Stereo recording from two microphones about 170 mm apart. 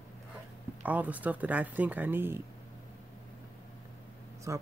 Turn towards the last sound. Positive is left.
turn(degrees=-15)  # may be behind; listen again after turning